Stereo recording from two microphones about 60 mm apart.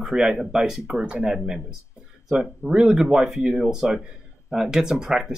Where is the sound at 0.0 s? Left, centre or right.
Centre.